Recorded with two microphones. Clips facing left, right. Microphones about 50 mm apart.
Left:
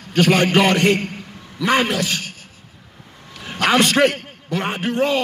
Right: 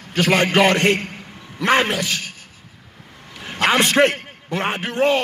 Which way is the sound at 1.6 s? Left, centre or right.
Right.